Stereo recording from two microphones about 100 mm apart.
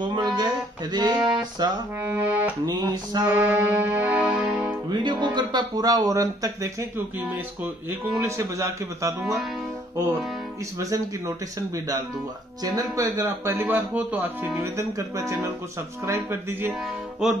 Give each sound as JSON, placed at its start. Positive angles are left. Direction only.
{"t": 0.1, "sound": "music", "side_deg": -45}
{"t": 2.0, "sound": "music", "side_deg": -20}
{"t": 2.6, "sound": "speech", "side_deg": -40}
{"t": 3.3, "sound": "music", "side_deg": -15}
{"t": 4.8, "sound": "speech", "side_deg": -45}
{"t": 8.2, "sound": "speech", "side_deg": -30}
{"t": 9.2, "sound": "speech", "side_deg": 0}
{"t": 10.8, "sound": "speech", "side_deg": -35}
{"t": 17.2, "sound": "music", "side_deg": -5}